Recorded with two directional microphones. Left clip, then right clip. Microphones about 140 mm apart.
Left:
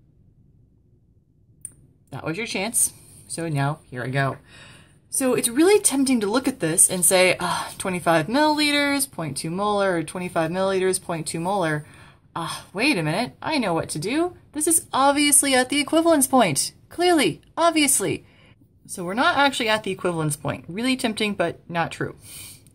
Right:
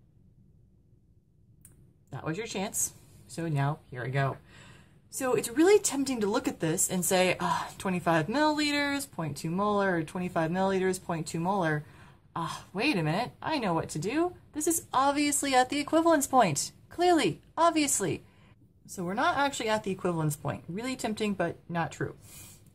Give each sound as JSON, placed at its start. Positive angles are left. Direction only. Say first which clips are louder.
{"t": 2.0, "sound": "speech", "louder": "left 7 dB", "side_deg": 20}